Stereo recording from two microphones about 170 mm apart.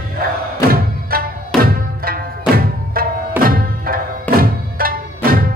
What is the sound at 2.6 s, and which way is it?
Tabla, 60° right (ahead or behind).